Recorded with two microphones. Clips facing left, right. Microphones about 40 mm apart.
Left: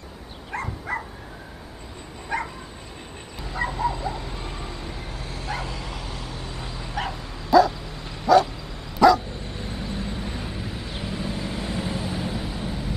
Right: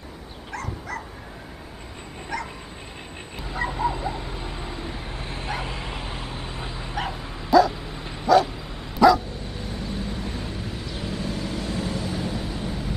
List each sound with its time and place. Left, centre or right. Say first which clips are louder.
0.5 s dog: left 3 dB; left
2.3 s bow-wow: left 3 dB; left
3.5 s dog: even; centre
7.7 s bow-wow: right 2 dB; centre
9.0 s dog: even; centre
9.7 s vehicle: even; centre